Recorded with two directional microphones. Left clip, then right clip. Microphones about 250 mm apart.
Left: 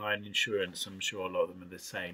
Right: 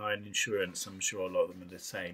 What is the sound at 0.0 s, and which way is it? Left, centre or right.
Speech, centre.